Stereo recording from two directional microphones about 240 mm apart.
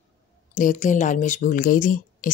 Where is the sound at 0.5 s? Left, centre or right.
Left.